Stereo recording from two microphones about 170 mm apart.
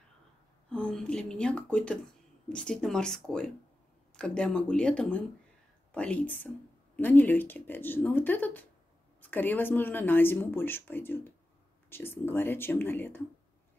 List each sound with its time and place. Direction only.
0.7 s speech: 5° left (ahead or behind)